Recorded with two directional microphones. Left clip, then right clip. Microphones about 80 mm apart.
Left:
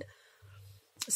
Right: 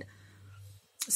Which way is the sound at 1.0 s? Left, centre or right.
Left.